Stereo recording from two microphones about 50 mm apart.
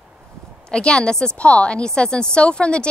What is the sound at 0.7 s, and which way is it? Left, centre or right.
A woman's voice, centre.